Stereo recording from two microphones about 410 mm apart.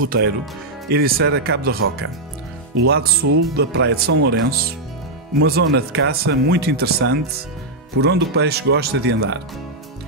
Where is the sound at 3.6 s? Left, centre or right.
Right.